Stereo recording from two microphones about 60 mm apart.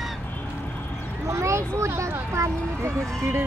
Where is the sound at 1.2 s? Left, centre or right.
Right.